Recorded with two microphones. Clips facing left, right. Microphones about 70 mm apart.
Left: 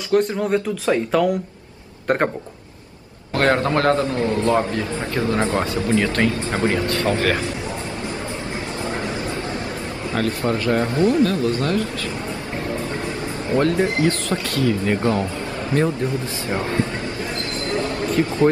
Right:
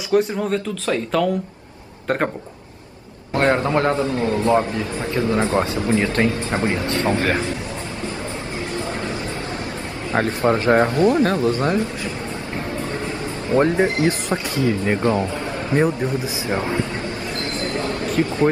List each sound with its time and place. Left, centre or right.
0.1 s speech: centre
0.5 s speech: centre
3.3 s speech: right
10.1 s speech: right
13.6 s speech: right
15.7 s speech: right
17.6 s basketball bounce: right